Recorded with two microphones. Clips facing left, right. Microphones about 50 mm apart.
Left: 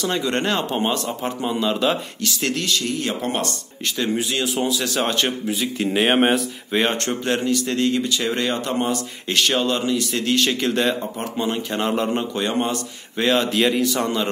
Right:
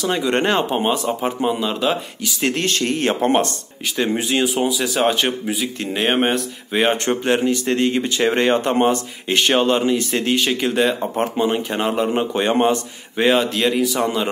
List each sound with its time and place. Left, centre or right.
0.1 s speech: centre
0.7 s speech: centre
1.6 s speech: centre
2.4 s speech: right; by 5.7 s centre
5.8 s speech: centre
7.1 s speech: centre
10.4 s speech: centre
11.9 s speech: centre
12.2 s speech: right
13.4 s speech: centre